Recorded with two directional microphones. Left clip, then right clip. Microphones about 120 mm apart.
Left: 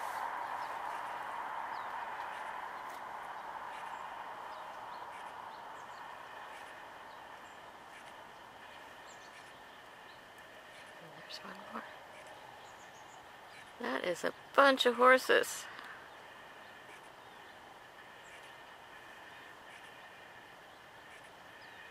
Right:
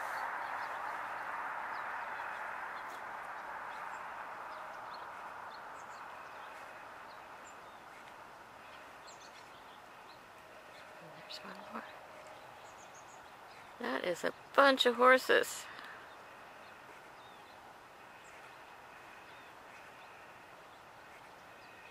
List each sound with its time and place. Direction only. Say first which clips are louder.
0.0 s a sound: even; 25° right (ahead or behind)
11.2 s speech: even; 5° right (ahead or behind)
13.7 s speech: even; 5° right (ahead or behind)